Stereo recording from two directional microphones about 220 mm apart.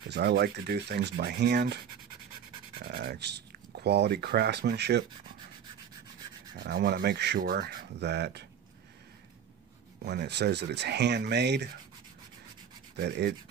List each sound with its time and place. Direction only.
0.1 s speech: 50° right (ahead or behind)
2.8 s speech: 45° right (ahead or behind)
6.6 s speech: 50° right (ahead or behind)
10.0 s speech: 50° right (ahead or behind)
12.9 s speech: 45° right (ahead or behind)